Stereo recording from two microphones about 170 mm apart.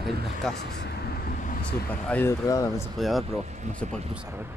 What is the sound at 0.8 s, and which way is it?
Vehicle, 65° left (ahead or behind).